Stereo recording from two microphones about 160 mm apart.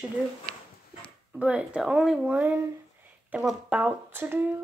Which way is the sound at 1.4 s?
10° right (ahead or behind).